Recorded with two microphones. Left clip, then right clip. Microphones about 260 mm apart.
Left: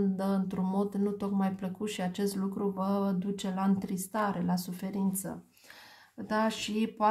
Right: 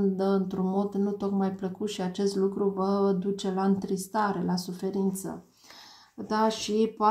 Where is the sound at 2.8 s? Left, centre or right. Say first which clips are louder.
Right 7 dB; left.